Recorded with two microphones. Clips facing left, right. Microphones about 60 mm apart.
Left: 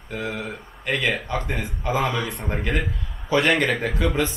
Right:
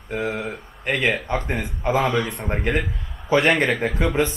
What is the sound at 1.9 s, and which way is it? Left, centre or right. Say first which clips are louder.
Speech: right 3 dB; centre.